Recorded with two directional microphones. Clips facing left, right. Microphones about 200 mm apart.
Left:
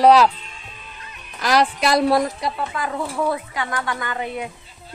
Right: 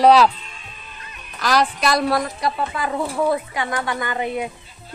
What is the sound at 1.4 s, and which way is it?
A woman's voice, 25° left (ahead or behind).